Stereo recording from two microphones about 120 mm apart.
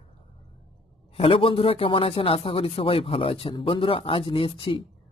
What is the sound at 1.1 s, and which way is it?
Speech, 55° left (ahead or behind).